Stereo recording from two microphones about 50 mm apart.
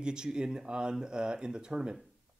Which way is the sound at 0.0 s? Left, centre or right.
Centre.